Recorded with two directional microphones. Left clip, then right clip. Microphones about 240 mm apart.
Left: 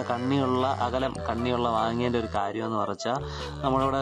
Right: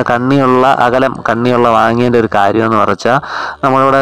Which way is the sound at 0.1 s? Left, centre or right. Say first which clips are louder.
Right 15 dB; right.